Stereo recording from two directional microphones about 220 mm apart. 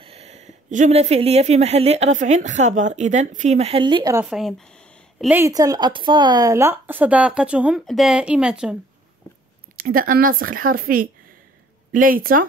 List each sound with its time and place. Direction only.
0.0 s speech: 30° right (ahead or behind)
4.3 s a sound: centre (ahead or behind)
5.3 s a woman's voice: 15° right (ahead or behind)
9.8 s speech: 40° right (ahead or behind)